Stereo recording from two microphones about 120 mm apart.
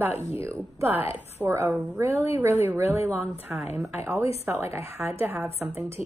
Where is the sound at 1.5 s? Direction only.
25° right (ahead or behind).